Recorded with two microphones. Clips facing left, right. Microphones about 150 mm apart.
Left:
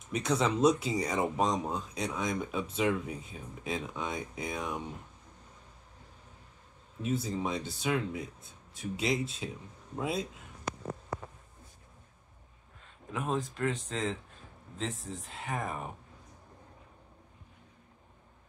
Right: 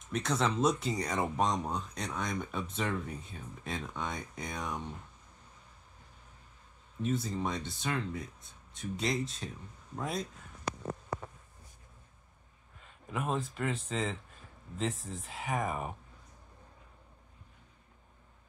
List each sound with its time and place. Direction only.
0.1 s speech: centre (ahead or behind)
7.0 s speech: 5° left (ahead or behind)
13.1 s speech: 5° right (ahead or behind)